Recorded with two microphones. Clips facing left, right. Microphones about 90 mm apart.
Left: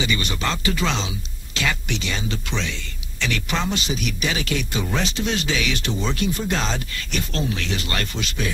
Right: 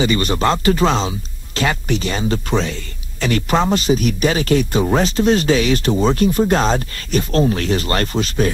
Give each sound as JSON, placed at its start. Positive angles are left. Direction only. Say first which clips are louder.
{"t": 0.0, "sound": "speech", "louder": "right 8 dB", "side_deg": -40}